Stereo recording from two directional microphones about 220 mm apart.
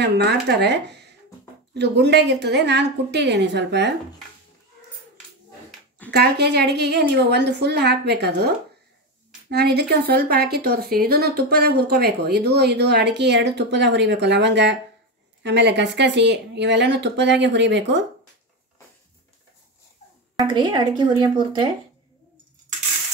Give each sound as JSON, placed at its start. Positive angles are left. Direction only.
{"t": 0.0, "sound": "speech", "side_deg": -50}
{"t": 6.1, "sound": "speech", "side_deg": -45}
{"t": 20.4, "sound": "a woman's voice", "side_deg": -20}